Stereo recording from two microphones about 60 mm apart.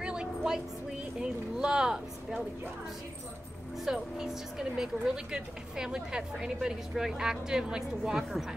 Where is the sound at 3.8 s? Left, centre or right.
Centre.